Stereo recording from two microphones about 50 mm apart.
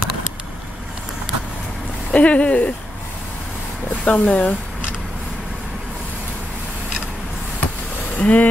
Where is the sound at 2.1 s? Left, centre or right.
Left.